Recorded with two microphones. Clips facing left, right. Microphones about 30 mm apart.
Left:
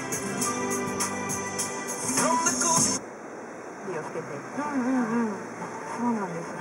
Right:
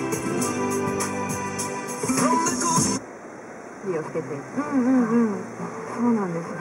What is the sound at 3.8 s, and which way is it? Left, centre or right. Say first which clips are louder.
Speech: right 6 dB; centre.